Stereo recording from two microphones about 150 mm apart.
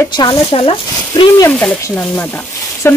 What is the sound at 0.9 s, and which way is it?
Speech, 25° left (ahead or behind).